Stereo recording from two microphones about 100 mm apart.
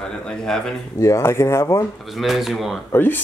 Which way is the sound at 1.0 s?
30° left (ahead or behind).